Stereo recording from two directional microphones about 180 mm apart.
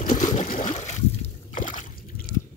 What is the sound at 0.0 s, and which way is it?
Water, 45° left (ahead or behind).